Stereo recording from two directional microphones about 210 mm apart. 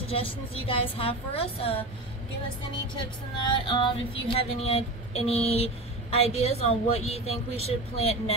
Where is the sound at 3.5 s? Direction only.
25° left (ahead or behind).